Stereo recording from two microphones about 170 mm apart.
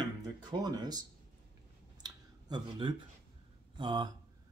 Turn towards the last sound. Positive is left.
turn(degrees=-25)  # may be behind; listen again after turning